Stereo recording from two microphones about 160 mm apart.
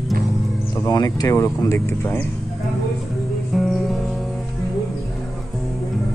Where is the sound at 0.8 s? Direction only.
25° left (ahead or behind).